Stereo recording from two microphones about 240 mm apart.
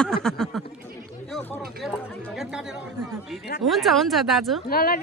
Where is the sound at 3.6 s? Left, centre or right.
Centre.